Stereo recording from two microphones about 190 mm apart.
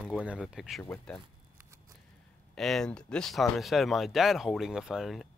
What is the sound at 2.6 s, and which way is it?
Speech, centre (ahead or behind).